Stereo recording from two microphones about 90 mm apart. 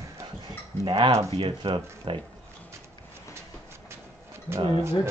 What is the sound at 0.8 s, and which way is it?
Speech, 60° right (ahead or behind).